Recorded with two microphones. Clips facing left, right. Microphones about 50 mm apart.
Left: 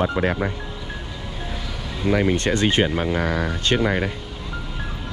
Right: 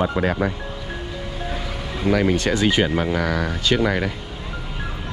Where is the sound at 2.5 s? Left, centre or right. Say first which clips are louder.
Even; centre.